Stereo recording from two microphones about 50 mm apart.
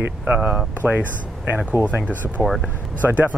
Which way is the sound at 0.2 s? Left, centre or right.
Right.